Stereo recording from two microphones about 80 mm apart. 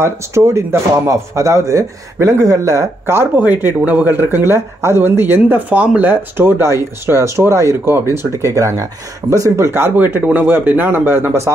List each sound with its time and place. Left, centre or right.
0.0 s speech: right
3.3 s speech: right
9.7 s speech: right